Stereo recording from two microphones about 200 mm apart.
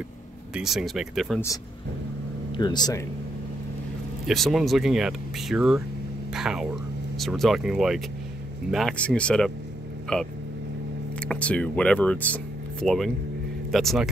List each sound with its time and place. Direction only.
0.6 s speech: centre (ahead or behind)
2.5 s speech: 20° left (ahead or behind)
4.3 s speech: centre (ahead or behind)